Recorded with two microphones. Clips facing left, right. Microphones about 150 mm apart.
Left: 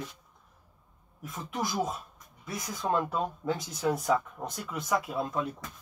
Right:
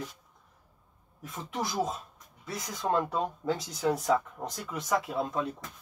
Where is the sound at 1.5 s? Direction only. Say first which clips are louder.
Even; 20° right (ahead or behind).